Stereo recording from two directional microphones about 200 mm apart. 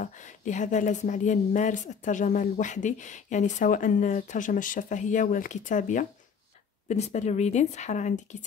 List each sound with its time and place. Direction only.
0.0 s speech: 40° left (ahead or behind)